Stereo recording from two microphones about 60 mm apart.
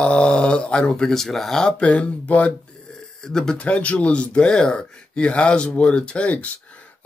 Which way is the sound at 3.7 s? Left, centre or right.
Left.